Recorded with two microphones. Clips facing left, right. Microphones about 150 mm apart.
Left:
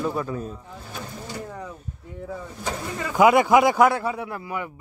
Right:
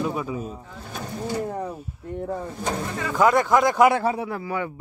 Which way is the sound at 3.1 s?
10° left (ahead or behind).